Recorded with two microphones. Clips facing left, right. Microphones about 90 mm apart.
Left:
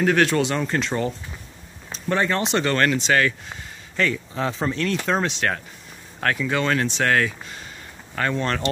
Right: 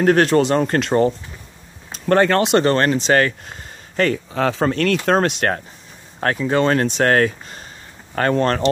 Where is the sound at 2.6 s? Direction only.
35° right (ahead or behind).